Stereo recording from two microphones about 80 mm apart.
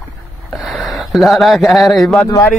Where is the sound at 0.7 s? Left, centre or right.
Centre.